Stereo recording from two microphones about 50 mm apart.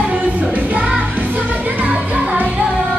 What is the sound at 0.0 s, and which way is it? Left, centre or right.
Music, right.